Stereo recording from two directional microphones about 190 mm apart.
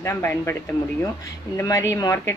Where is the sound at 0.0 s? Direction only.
15° left (ahead or behind).